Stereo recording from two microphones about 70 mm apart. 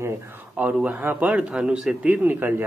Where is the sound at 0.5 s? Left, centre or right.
Right.